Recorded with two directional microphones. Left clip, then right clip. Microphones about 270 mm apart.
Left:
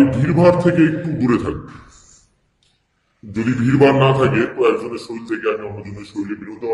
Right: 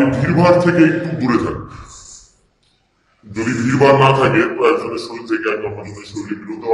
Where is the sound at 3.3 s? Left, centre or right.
Left.